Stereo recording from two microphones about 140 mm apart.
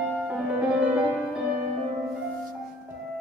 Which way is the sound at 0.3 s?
10° right (ahead or behind).